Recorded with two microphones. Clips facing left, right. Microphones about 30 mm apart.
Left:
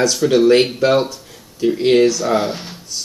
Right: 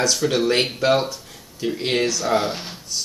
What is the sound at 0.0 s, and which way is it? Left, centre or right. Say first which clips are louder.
Speech: left 6 dB; centre.